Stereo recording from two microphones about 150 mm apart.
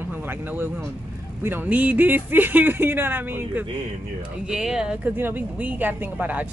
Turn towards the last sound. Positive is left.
turn(degrees=-10)  # may be behind; listen again after turning